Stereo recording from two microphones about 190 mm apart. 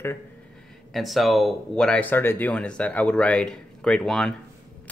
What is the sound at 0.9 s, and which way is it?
Speech, centre (ahead or behind).